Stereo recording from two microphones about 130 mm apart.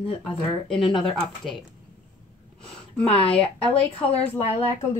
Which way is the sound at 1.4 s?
Centre (ahead or behind).